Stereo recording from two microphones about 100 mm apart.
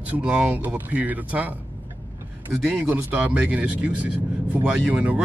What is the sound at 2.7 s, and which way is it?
Speech, 15° right (ahead or behind).